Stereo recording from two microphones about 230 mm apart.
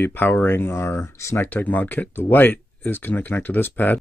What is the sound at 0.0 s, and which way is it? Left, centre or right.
Speech, centre.